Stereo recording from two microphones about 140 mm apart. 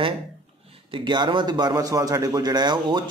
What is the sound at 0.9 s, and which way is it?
A man's voice, 35° right (ahead or behind).